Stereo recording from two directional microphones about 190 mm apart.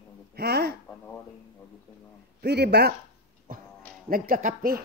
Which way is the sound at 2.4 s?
60° right (ahead or behind).